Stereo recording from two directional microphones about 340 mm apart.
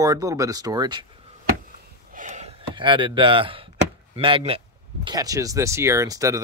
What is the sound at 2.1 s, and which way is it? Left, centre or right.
Gasp, right.